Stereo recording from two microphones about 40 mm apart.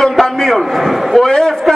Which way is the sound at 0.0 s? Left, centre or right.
Centre.